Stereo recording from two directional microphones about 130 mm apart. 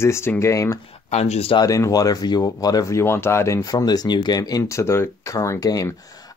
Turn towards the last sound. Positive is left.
turn(degrees=25)  # may be behind; listen again after turning